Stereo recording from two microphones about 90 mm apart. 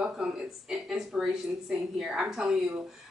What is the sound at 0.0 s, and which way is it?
Speech, 5° right (ahead or behind).